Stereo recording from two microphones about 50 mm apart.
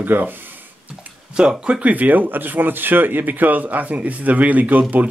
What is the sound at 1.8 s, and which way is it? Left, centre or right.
Speech, right.